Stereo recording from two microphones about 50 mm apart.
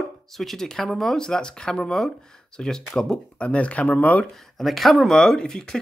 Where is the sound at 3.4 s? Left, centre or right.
Left.